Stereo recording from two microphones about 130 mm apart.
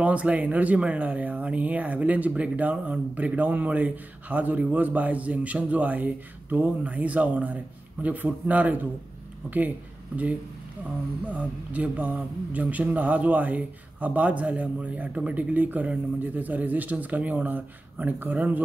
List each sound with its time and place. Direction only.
0.0 s speech: 10° right (ahead or behind)
11.2 s speech: 10° right (ahead or behind)